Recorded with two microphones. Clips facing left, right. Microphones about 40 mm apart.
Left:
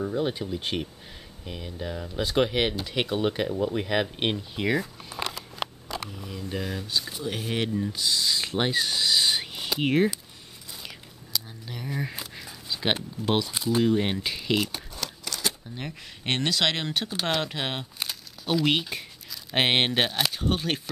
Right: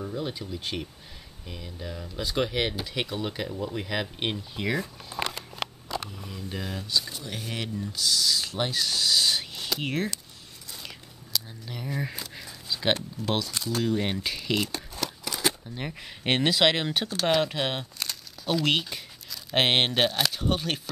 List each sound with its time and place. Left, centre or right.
0.0 s speech: centre
6.3 s speech: centre
11.3 s a sound: centre
15.0 s speech: centre